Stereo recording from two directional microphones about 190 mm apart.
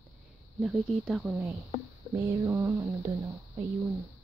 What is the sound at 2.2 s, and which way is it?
Speech, 15° right (ahead or behind).